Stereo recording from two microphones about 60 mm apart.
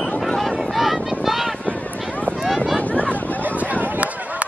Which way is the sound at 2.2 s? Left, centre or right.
Centre.